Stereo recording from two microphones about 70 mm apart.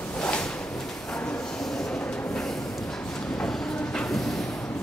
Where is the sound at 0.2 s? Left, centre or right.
Centre.